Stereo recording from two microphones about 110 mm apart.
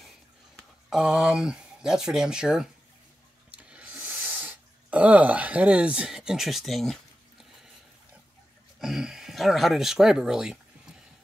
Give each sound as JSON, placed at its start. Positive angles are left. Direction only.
{"t": 0.8, "sound": "speech", "side_deg": -5}
{"t": 3.5, "sound": "a sound", "side_deg": -10}
{"t": 8.7, "sound": "speech", "side_deg": -5}